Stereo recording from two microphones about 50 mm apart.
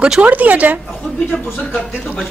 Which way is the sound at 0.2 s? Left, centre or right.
Right.